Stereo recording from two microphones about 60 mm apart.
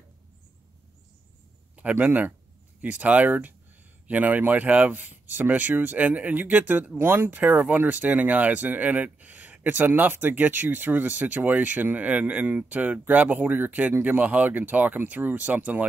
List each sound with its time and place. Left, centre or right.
1.8 s speech: right